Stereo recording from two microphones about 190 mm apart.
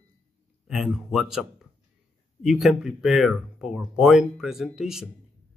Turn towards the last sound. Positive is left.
turn(degrees=0)  # may be behind; listen again after turning